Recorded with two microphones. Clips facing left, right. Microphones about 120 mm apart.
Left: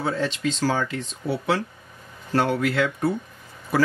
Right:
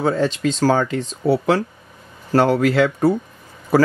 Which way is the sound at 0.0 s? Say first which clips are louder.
Right 6 dB; 40° right (ahead or behind).